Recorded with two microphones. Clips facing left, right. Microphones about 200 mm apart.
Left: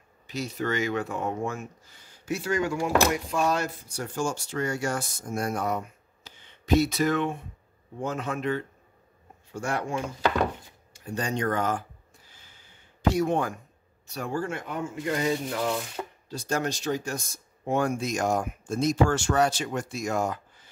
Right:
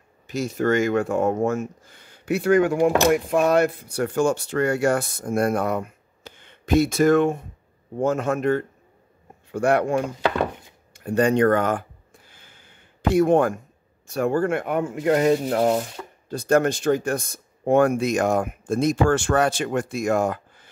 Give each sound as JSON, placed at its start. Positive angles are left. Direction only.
{"t": 0.3, "sound": "speech", "side_deg": -50}
{"t": 9.5, "sound": "speech", "side_deg": -60}
{"t": 12.3, "sound": "a sound", "side_deg": -55}
{"t": 14.0, "sound": "speech", "side_deg": -55}